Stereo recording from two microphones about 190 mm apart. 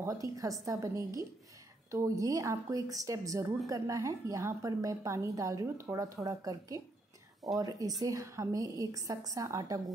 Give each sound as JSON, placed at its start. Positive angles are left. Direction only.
{"t": 0.0, "sound": "a woman's voice", "side_deg": -15}